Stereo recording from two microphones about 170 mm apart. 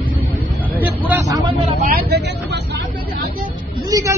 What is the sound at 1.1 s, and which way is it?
Vehicle, 20° right (ahead or behind).